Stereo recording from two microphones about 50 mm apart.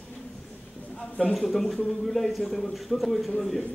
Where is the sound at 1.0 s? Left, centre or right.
Left.